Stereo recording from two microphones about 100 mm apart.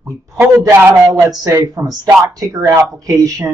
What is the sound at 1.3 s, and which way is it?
Speech, 35° right (ahead or behind).